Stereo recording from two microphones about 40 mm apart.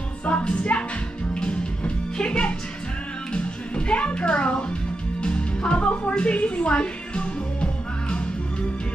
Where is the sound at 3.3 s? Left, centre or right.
Left.